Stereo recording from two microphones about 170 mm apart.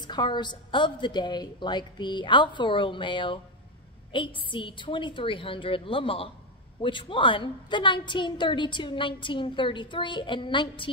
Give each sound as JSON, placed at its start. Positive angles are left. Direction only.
{"t": 0.0, "sound": "a woman's voice", "side_deg": 25}